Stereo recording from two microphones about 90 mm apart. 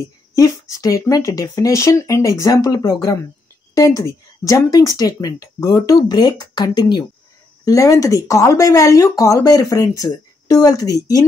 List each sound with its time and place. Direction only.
0.4 s speech: 40° left (ahead or behind)
7.6 s speech: 35° left (ahead or behind)